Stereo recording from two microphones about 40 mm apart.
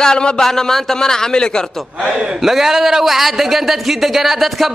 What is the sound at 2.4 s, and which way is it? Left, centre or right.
Speech, centre.